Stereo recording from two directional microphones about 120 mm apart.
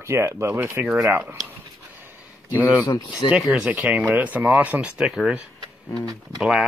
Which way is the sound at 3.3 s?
5° right (ahead or behind).